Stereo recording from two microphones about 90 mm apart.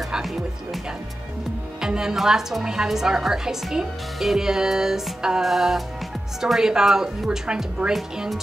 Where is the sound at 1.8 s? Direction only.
5° right (ahead or behind).